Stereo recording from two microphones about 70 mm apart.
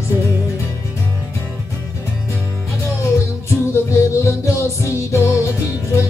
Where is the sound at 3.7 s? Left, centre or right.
Left.